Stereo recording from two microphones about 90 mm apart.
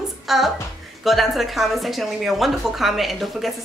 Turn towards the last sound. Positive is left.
turn(degrees=0)  # may be behind; listen again after turning